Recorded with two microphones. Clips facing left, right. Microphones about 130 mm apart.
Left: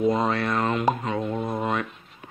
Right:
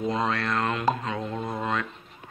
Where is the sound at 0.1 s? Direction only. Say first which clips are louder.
Left 3 dB; 10° left (ahead or behind).